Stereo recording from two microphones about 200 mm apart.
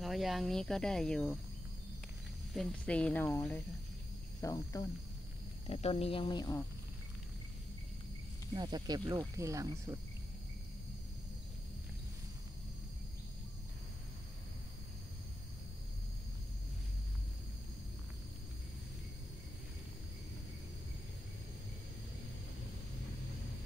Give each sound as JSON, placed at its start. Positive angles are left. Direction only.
{"t": 0.0, "sound": "speech", "side_deg": 0}
{"t": 2.5, "sound": "speech", "side_deg": 5}
{"t": 4.4, "sound": "speech", "side_deg": 15}
{"t": 5.7, "sound": "speech", "side_deg": 30}
{"t": 8.5, "sound": "speech", "side_deg": -20}